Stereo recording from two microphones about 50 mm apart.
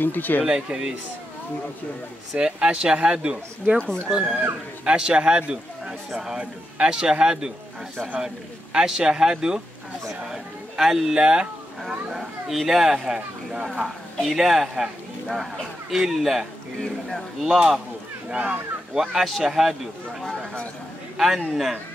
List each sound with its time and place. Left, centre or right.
0.0 s speech: left
0.4 s speech: right
2.3 s a man's voice: right
3.7 s speech: centre
4.1 s a man's voice: centre
8.7 s a man's voice: centre
11.1 s a man's voice: centre
11.8 s speech: centre
13.8 s a man's voice: centre
21.4 s speech: centre